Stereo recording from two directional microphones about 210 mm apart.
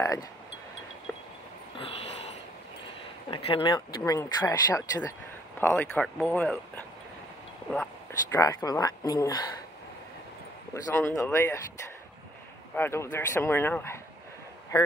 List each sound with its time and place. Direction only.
0.0 s speech: 15° left (ahead or behind)
1.8 s sniff: 30° left (ahead or behind)
3.3 s speech: 25° left (ahead or behind); by 6.6 s 5° left (ahead or behind)
8.3 s speech: 15° left (ahead or behind)
10.7 s speech: 10° left (ahead or behind)
12.7 s speech: 10° left (ahead or behind)